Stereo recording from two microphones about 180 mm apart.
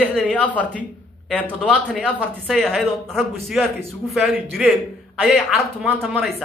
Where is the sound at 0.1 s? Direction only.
10° left (ahead or behind).